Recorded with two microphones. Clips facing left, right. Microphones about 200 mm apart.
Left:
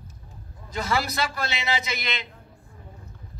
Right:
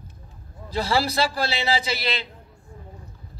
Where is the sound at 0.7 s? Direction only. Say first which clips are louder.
Right 4 dB; 30° right (ahead or behind).